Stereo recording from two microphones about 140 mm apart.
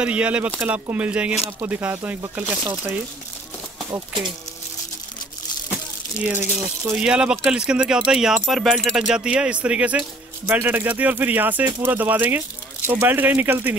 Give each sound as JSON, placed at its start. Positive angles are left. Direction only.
{"t": 0.0, "sound": "speech", "side_deg": -10}
{"t": 6.1, "sound": "speech", "side_deg": -10}